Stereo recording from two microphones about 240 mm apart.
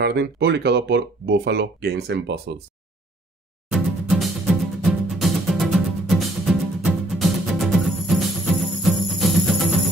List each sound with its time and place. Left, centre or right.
0.0 s speech: right
3.7 s music: centre